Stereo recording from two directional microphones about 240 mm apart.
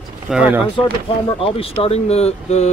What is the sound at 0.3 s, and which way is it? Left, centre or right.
Speech, centre.